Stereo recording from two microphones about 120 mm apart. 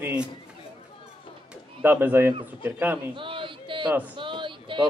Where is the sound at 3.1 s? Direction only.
45° right (ahead or behind).